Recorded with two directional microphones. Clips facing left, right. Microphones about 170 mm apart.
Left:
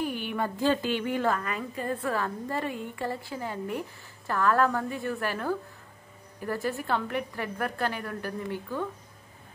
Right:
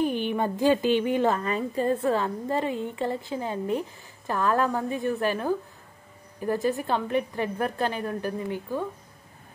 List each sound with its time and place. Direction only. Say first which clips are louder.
0.0 s a woman's voice: right 5 dB; 20° right (ahead or behind)